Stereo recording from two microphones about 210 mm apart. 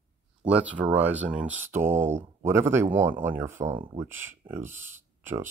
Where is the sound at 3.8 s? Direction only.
25° right (ahead or behind).